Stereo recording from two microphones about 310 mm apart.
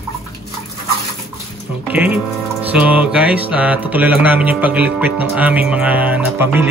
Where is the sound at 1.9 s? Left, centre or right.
Centre.